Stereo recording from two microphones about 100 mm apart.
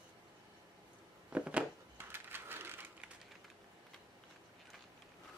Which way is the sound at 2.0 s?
25° right (ahead or behind).